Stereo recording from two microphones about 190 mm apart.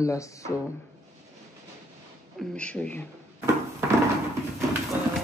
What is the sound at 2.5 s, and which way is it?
Speech, 5° left (ahead or behind).